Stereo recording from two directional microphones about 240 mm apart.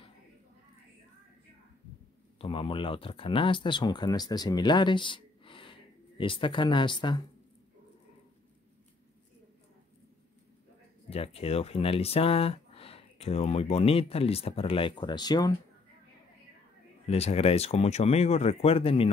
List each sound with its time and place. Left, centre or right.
2.3 s speech: left
11.1 s speech: left
17.1 s speech: left